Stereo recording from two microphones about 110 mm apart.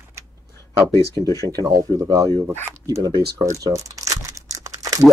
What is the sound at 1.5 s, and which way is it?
Speech, 35° right (ahead or behind).